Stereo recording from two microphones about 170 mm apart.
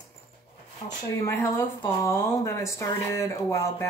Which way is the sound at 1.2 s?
15° left (ahead or behind).